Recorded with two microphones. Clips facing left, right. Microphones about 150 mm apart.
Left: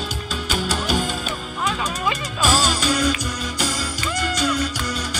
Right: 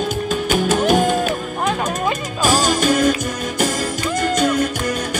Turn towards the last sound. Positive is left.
turn(degrees=-50)  # may be behind; listen again after turning